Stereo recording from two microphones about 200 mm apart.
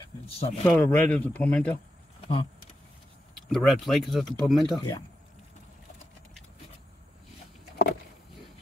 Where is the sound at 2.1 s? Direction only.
25° left (ahead or behind).